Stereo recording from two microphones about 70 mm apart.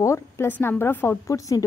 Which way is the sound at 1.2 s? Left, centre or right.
Left.